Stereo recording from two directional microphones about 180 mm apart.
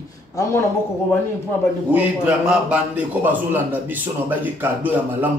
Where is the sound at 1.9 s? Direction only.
10° right (ahead or behind).